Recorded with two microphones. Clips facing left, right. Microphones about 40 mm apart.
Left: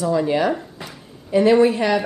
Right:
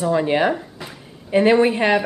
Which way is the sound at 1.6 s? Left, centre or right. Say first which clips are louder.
Even; right.